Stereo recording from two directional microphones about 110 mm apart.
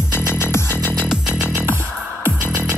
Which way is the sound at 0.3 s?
20° left (ahead or behind).